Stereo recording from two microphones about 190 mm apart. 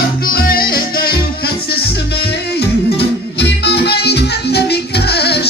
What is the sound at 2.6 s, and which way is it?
Music, 60° left (ahead or behind).